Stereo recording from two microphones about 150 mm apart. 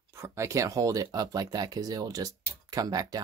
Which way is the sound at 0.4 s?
20° right (ahead or behind).